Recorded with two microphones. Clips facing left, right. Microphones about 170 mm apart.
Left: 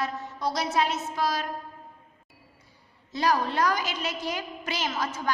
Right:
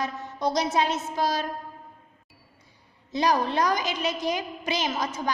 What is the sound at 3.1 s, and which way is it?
A woman's voice, 20° right (ahead or behind).